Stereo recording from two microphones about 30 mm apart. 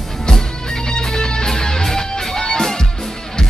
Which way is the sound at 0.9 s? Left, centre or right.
Left.